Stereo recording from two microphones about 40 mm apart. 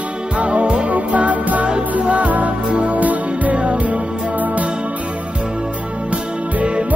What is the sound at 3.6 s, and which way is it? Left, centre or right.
Music, right.